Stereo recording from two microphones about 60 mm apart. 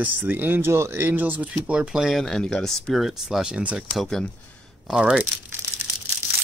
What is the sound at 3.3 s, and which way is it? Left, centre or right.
Speech, centre.